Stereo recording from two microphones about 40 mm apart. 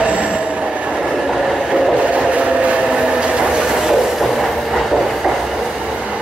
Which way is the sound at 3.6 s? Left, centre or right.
Centre.